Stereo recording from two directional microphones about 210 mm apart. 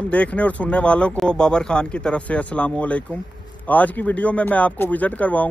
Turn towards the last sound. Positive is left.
turn(degrees=5)  # may be behind; listen again after turning